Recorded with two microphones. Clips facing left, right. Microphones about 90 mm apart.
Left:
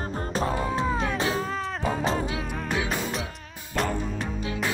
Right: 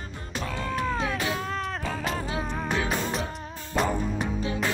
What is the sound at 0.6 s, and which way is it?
Music, 15° left (ahead or behind).